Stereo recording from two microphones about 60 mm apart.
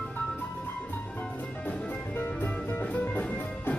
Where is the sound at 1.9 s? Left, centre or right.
Left.